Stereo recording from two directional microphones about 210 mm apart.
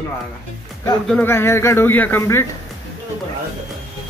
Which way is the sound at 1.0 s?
10° left (ahead or behind).